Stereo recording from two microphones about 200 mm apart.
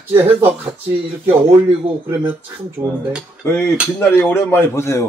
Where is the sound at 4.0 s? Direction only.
10° left (ahead or behind).